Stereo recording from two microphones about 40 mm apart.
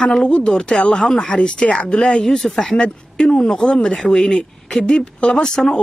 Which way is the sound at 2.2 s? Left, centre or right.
Centre.